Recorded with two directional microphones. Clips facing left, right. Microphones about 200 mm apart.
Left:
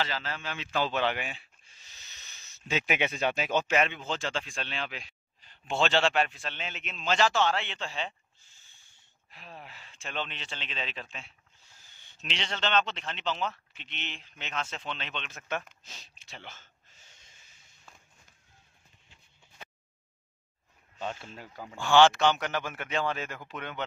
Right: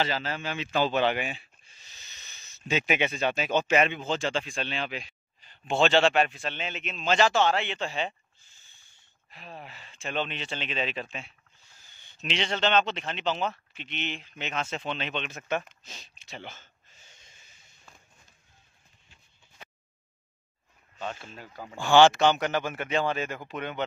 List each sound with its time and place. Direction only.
0.0 s a man's voice: 15° right (ahead or behind)
2.7 s speech: 5° left (ahead or behind)
3.7 s a man's voice: 5° right (ahead or behind)
9.3 s speech: centre (ahead or behind)
10.0 s a man's voice: 10° right (ahead or behind)
21.0 s speech: 20° left (ahead or behind)
21.5 s a man's voice: 5° right (ahead or behind)